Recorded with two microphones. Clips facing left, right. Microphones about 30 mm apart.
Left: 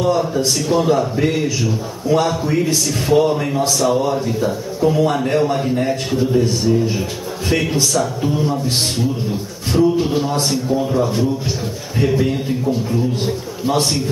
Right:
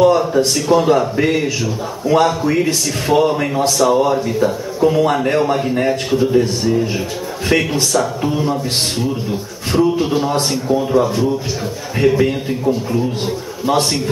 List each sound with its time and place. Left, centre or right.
0.0 s a man's voice: right
9.7 s a man's voice: right
12.0 s a man's voice: right